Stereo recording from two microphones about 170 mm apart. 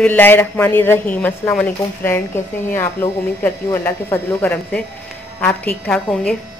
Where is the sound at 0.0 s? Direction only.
10° left (ahead or behind).